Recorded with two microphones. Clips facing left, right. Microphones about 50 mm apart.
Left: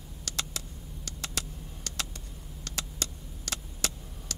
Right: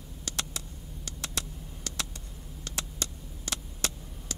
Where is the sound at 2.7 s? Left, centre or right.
Right.